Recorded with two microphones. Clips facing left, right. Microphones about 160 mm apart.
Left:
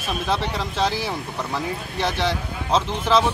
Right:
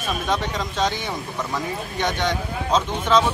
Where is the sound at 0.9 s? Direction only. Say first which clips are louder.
Left 1 dB; 5° left (ahead or behind).